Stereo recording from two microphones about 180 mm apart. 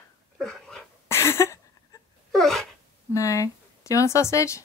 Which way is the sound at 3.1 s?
15° left (ahead or behind).